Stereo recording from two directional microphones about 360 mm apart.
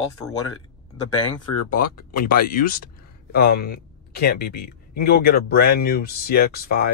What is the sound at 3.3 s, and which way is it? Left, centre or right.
Speech, left.